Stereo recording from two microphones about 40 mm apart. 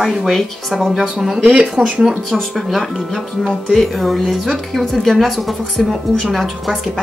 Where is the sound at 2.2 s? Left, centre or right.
Centre.